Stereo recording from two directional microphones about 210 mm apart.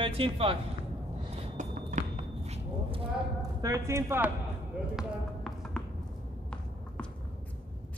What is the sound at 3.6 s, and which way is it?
Speech, 15° right (ahead or behind).